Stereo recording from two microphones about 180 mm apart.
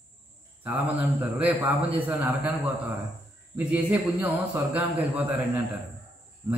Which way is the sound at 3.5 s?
10° right (ahead or behind).